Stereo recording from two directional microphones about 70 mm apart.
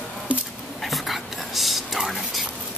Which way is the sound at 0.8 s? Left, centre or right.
Centre.